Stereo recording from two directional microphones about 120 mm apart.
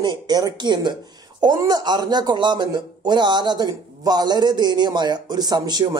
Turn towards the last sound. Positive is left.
turn(degrees=-35)  # may be behind; listen again after turning